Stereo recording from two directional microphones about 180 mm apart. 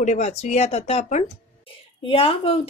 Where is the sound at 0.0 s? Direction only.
40° left (ahead or behind).